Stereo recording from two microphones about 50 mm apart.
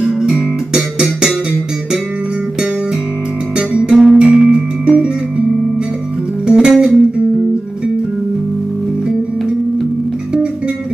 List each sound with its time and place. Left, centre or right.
0.0 s music: centre
3.7 s guitar: centre
4.2 s music: centre
6.4 s music: centre